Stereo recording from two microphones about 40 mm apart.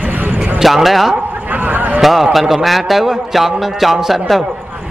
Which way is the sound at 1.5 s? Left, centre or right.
Right.